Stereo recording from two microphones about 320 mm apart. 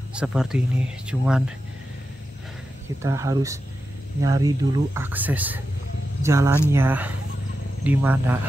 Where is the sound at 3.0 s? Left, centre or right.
Centre.